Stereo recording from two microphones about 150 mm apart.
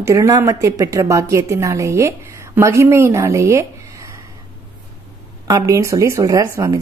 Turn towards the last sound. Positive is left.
turn(degrees=-20)  # may be behind; listen again after turning